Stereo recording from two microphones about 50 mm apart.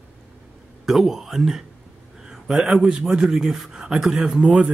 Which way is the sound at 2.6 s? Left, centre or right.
Centre.